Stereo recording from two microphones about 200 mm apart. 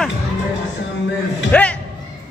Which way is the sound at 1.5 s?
5° left (ahead or behind).